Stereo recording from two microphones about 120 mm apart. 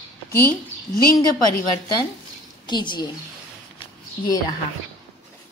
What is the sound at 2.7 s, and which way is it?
Speech, 40° left (ahead or behind).